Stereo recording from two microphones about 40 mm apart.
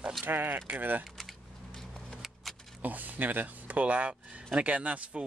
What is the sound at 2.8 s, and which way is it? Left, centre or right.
Speech, right.